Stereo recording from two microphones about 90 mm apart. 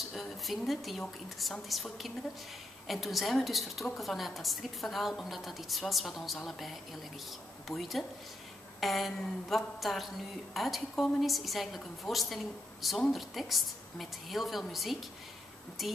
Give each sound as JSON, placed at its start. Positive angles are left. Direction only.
{"t": 0.1, "sound": "a woman's voice", "side_deg": 0}